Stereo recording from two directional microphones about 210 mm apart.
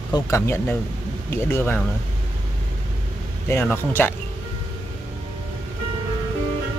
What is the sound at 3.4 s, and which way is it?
Speech, 10° left (ahead or behind).